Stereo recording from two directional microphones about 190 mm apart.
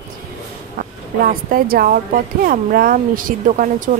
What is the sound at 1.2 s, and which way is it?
A woman's voice, 50° right (ahead or behind).